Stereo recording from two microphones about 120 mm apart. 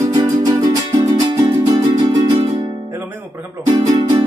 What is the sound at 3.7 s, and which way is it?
Music, 40° right (ahead or behind).